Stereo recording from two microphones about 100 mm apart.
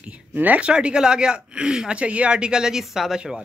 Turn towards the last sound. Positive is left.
turn(degrees=-5)  # may be behind; listen again after turning